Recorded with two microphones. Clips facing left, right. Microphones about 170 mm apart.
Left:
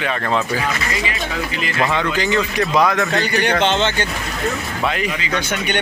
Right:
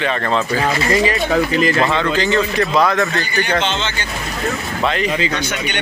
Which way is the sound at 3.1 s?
70° left (ahead or behind).